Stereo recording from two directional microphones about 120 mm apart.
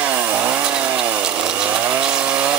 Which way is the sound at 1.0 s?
10° right (ahead or behind).